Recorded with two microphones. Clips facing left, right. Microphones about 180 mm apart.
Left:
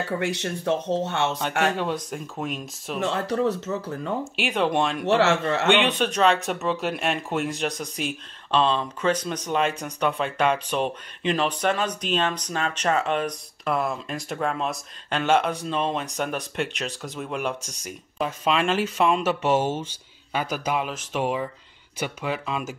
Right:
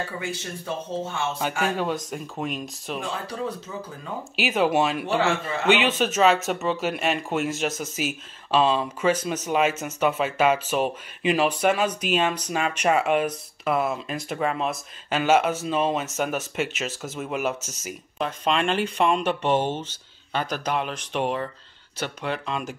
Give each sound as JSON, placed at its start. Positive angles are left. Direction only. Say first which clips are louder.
{"t": 0.2, "sound": "speech", "louder": "left 6 dB", "side_deg": 75}
{"t": 2.0, "sound": "speech", "louder": "even", "side_deg": 0}
{"t": 3.0, "sound": "speech", "louder": "left 8 dB", "side_deg": 75}
{"t": 4.4, "sound": "speech", "louder": "right 3 dB", "side_deg": -5}
{"t": 5.0, "sound": "a man's voice", "louder": "left 3 dB", "side_deg": 80}
{"t": 5.7, "sound": "speech", "louder": "right 2 dB", "side_deg": -5}